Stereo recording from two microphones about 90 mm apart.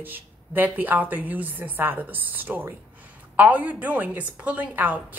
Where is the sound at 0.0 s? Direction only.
20° right (ahead or behind).